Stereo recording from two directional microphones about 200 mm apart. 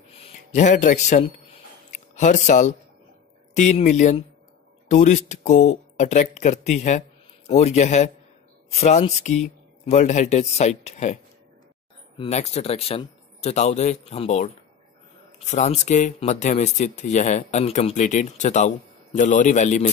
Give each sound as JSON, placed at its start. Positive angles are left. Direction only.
{"t": 0.5, "sound": "speech", "side_deg": 35}
{"t": 1.9, "sound": "a sound", "side_deg": 35}
{"t": 3.5, "sound": "speech", "side_deg": 35}
{"t": 12.2, "sound": "speech", "side_deg": 35}